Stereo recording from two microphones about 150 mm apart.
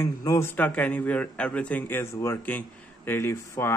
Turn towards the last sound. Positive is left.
turn(degrees=15)  # may be behind; listen again after turning